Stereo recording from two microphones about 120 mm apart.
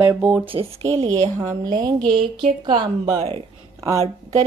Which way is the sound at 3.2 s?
55° right (ahead or behind).